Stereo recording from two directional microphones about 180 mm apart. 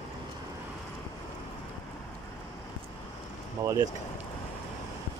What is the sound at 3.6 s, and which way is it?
Speech, 20° right (ahead or behind).